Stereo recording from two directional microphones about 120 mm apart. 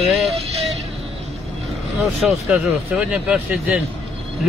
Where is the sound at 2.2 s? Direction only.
5° right (ahead or behind).